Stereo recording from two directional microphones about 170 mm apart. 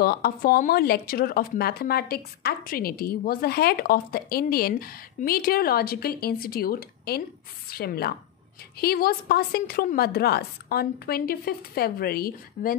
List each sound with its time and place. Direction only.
0.0 s speech: 60° left (ahead or behind)